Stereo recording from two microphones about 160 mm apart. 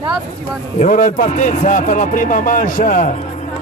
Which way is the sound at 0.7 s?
50° left (ahead or behind).